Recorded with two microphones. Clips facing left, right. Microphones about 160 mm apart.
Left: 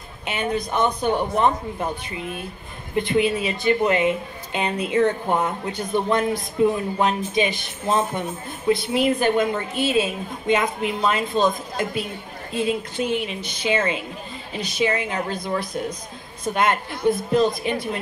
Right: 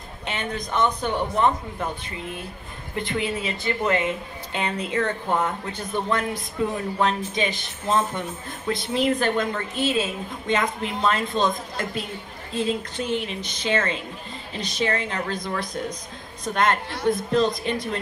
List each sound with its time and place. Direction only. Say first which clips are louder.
0.3 s a woman's voice: left 4 dB; 10° left (ahead or behind)